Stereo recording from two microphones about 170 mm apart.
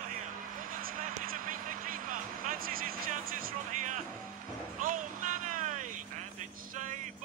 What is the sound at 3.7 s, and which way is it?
Music, 45° right (ahead or behind).